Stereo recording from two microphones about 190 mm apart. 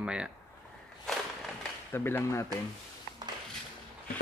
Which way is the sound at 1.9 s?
10° left (ahead or behind).